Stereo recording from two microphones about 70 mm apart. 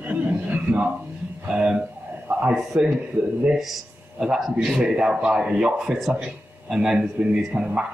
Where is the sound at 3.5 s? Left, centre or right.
Centre.